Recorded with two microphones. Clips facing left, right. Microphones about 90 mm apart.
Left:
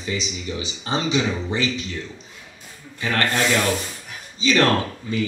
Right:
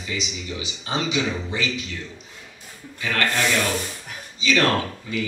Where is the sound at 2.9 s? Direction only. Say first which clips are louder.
Left 2 dB; 35° left (ahead or behind).